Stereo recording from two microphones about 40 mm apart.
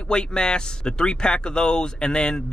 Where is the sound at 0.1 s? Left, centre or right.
Left.